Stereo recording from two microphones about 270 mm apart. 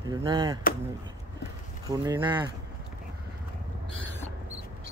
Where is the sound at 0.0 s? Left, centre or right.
Centre.